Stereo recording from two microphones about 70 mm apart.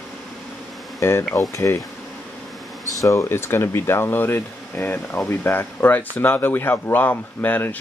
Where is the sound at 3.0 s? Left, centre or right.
Left.